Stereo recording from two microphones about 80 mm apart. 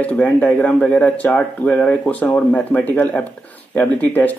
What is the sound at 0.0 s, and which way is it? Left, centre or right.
Speech, centre.